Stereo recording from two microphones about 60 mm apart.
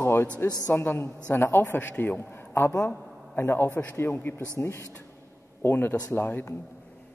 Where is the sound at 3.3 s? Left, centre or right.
Left.